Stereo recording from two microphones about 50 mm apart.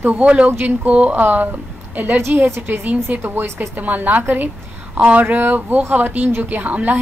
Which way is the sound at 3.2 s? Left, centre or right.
Right.